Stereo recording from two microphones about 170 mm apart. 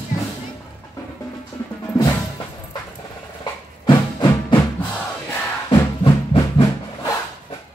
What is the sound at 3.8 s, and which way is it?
Music, 30° left (ahead or behind).